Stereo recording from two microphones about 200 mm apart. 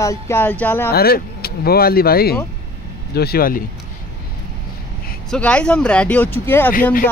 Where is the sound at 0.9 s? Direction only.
50° left (ahead or behind).